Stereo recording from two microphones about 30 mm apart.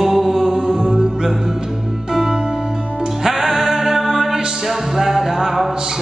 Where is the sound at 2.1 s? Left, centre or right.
Centre.